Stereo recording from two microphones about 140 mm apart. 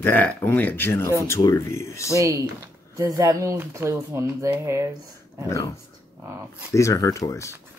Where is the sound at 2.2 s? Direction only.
20° right (ahead or behind).